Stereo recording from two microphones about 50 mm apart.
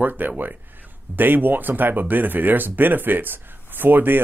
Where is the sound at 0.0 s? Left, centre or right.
Right.